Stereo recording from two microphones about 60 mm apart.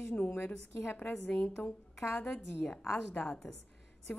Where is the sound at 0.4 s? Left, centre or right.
Left.